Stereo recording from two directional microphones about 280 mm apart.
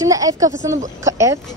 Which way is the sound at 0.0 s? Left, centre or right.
Centre.